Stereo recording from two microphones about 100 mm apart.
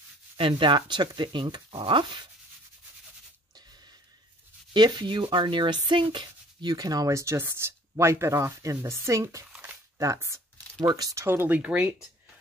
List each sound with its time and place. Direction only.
0.4 s speech: 60° right (ahead or behind)
4.7 s speech: 50° right (ahead or behind)
6.7 s speech: 40° right (ahead or behind)
9.9 s a sound: 30° right (ahead or behind)
11.0 s speech: 35° right (ahead or behind)
11.2 s speech: 20° right (ahead or behind)